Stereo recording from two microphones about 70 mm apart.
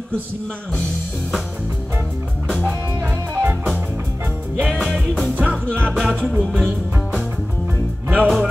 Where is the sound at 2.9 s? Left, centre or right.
Right.